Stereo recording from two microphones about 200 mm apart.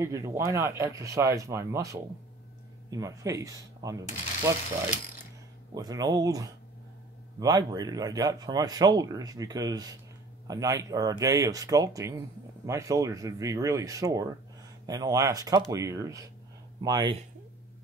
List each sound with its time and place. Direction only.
0.0 s speech: 15° right (ahead or behind)
5.8 s speech: 20° right (ahead or behind)